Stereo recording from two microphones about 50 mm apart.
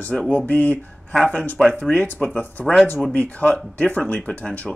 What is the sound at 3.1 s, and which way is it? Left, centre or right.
Speech, left.